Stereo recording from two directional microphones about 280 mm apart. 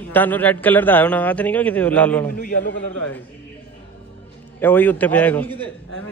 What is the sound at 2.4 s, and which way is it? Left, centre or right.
Speech, left.